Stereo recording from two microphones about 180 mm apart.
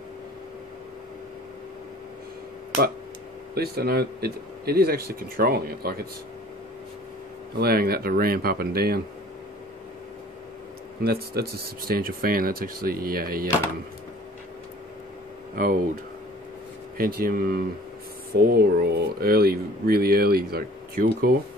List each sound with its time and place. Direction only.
3.5 s speech: 60° right (ahead or behind)
7.5 s speech: 60° right (ahead or behind)
11.0 s speech: 60° right (ahead or behind)
15.5 s speech: 50° right (ahead or behind)
16.9 s speech: 55° right (ahead or behind)